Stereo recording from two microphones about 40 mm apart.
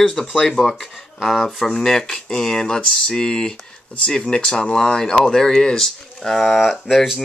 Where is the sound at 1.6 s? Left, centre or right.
Centre.